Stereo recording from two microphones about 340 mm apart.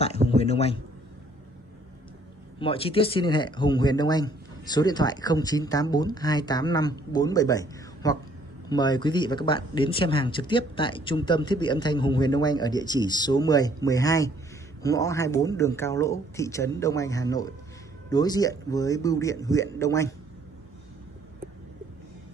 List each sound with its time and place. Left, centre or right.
0.4 s a man's voice: centre
2.6 s speech: centre